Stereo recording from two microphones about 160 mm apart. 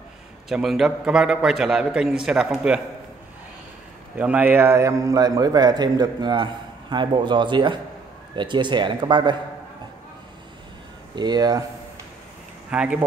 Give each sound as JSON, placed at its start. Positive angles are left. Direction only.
{"t": 0.5, "sound": "a man's voice", "side_deg": 0}
{"t": 4.2, "sound": "a man's voice", "side_deg": -10}
{"t": 11.1, "sound": "a man's voice", "side_deg": -25}
{"t": 12.7, "sound": "speech", "side_deg": -10}